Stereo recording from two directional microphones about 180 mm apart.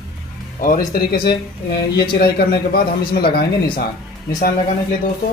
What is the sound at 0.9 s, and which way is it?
Speech, 60° left (ahead or behind).